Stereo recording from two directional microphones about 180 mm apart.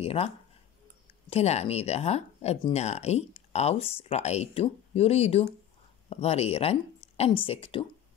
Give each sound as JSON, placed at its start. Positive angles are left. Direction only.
{"t": 0.0, "sound": "speech", "side_deg": 35}
{"t": 1.3, "sound": "speech", "side_deg": 35}